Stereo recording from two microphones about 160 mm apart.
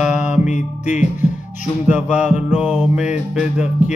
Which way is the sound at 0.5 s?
50° left (ahead or behind).